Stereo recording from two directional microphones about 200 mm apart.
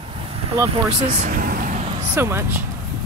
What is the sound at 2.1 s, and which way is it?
Speech, 10° right (ahead or behind).